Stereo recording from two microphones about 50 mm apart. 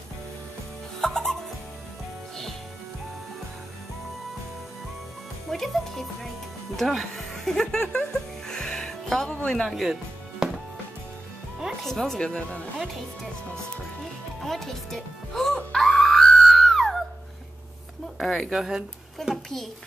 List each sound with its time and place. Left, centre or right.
1.0 s music: centre
5.5 s speech: centre
7.4 s music: centre
9.5 s a woman's voice: centre
10.4 s music: centre
11.8 s a woman's voice: centre
12.2 s speech: left
12.7 s speech: centre
14.4 s a woman's voice: centre
15.7 s music: centre
16.6 s a sound: centre
18.2 s a woman's voice: centre
18.5 s speech: centre
19.2 s a child's voice: centre